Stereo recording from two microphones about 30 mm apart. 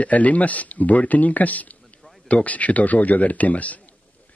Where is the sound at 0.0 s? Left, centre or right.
Left.